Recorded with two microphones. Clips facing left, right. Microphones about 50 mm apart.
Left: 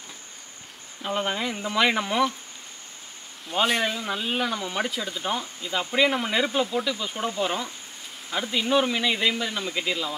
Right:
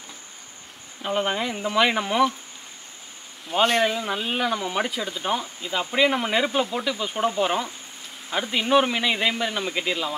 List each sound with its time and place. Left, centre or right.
1.0 s speech: centre
3.8 s speech: centre